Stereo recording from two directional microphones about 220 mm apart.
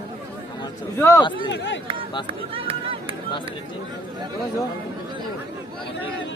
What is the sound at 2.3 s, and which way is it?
Speech, 25° right (ahead or behind).